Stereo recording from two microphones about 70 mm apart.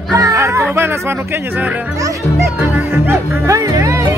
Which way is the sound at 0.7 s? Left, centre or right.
Right.